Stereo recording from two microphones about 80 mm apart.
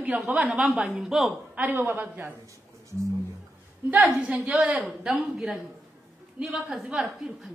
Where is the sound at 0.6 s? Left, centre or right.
Centre.